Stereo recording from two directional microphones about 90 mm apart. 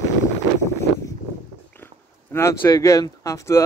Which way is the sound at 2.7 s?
40° left (ahead or behind).